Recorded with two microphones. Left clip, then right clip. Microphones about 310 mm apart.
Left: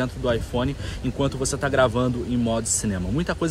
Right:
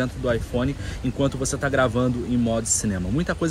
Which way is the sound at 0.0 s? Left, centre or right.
Centre.